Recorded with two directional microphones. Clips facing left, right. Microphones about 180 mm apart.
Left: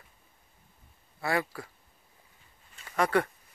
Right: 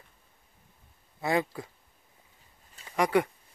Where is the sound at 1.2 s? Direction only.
20° right (ahead or behind).